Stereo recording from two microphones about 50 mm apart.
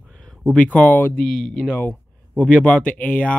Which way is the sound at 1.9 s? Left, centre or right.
Left.